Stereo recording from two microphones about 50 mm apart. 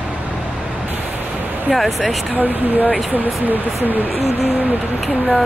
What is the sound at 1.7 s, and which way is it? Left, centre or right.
Speech, centre.